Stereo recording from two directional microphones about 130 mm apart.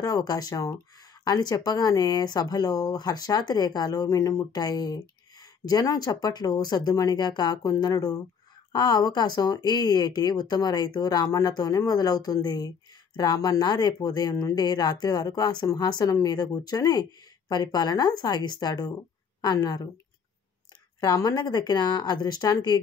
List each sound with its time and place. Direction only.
0.0 s speech: 30° left (ahead or behind)
21.0 s speech: 30° left (ahead or behind)